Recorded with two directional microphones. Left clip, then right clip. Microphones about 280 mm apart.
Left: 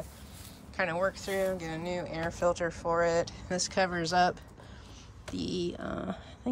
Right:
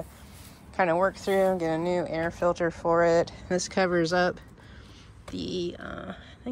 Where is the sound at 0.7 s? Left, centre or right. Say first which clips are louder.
Right 6 dB; centre.